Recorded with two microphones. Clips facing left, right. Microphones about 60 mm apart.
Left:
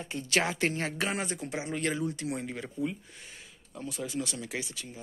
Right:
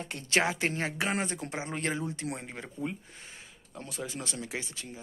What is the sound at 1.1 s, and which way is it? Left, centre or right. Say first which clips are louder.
Speech: right 1 dB; right.